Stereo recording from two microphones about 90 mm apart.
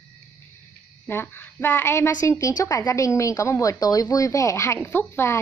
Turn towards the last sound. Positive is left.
turn(degrees=30)  # may be behind; listen again after turning